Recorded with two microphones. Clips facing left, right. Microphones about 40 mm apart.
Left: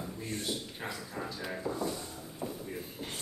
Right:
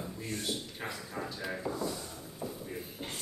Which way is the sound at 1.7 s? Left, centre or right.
Left.